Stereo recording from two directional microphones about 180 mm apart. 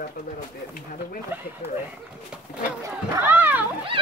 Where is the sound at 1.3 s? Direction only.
10° right (ahead or behind).